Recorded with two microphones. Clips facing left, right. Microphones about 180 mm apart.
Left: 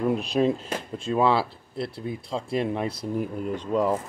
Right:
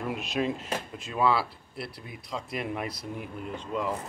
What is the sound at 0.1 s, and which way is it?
Speech, 35° left (ahead or behind).